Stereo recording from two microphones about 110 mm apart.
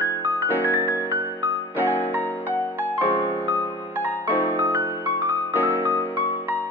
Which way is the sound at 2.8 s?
15° right (ahead or behind).